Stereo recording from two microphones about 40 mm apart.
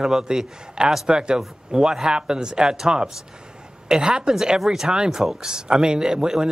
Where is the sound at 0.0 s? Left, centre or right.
Centre.